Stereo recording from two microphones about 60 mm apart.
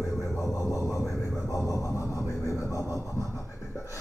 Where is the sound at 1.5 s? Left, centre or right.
Left.